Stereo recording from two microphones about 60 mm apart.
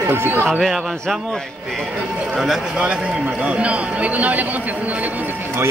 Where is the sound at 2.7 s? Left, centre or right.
Centre.